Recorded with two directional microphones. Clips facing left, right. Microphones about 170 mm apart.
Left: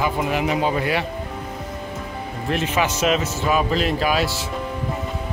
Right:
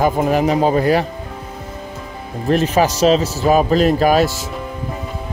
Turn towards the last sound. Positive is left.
turn(degrees=-45)  # may be behind; listen again after turning